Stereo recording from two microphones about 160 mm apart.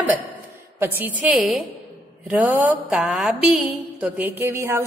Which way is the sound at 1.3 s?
Centre (ahead or behind).